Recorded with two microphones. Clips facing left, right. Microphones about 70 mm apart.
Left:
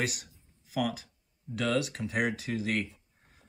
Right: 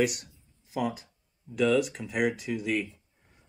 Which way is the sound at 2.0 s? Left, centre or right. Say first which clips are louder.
Right 2 dB; left.